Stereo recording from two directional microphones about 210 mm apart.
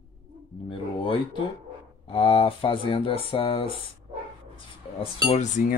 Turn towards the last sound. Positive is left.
turn(degrees=35)  # may be behind; listen again after turning